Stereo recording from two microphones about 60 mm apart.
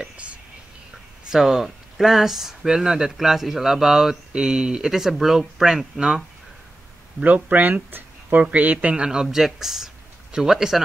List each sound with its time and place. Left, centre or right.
0.0 s whispering: right
1.3 s speech: centre
7.2 s speech: right; by 10.8 s centre